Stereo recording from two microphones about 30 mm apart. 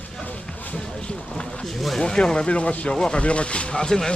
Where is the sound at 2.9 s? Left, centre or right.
Left.